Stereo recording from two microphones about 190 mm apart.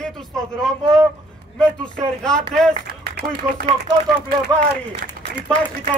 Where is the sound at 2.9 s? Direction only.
50° right (ahead or behind).